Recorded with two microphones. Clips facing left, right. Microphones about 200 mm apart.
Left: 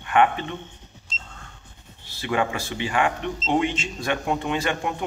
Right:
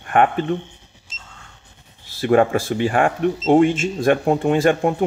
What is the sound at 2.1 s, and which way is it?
Speech, 50° right (ahead or behind).